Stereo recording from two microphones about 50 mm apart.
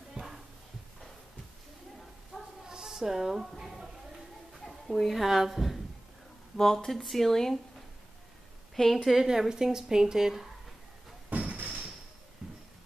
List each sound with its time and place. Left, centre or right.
0.1 s a sound: centre
2.3 s a sound: centre
4.6 s a woman's voice: centre
6.5 s speech: centre
8.7 s speech: centre
11.2 s slam: right
12.4 s music: centre